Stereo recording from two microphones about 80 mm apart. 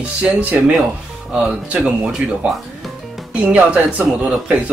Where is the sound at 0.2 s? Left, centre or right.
Centre.